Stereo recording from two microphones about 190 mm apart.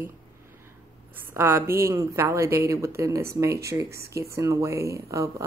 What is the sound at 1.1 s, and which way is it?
A woman's voice, 10° right (ahead or behind).